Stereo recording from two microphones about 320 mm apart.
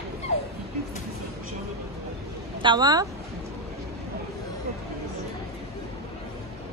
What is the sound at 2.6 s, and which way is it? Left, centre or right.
Speech, centre.